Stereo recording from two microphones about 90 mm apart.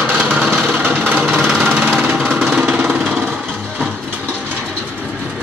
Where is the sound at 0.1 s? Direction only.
15° right (ahead or behind).